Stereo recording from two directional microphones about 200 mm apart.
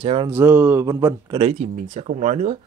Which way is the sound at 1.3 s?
30° right (ahead or behind).